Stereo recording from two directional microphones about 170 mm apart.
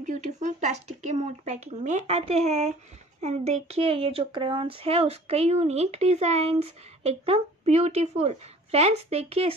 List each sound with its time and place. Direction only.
0.0 s speech: 45° right (ahead or behind)